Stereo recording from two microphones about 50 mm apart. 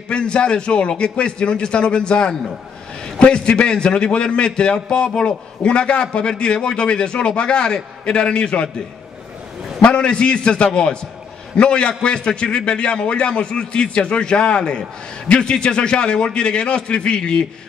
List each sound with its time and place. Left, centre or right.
0.1 s a man's voice: centre
9.8 s a man's voice: centre